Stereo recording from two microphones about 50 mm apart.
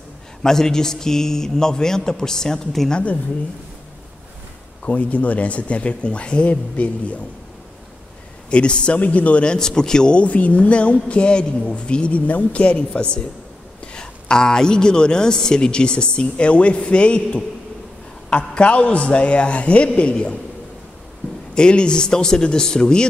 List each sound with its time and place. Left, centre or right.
0.4 s a woman's voice: centre
2.9 s a man's voice: left
4.8 s a man's voice: left
8.5 s a man's voice: left
21.5 s a woman's voice: centre